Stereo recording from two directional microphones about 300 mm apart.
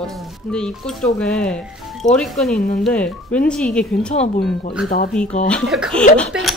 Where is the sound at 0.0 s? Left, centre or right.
Centre.